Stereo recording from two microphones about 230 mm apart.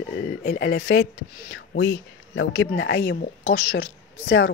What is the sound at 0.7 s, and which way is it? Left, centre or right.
Speech, left.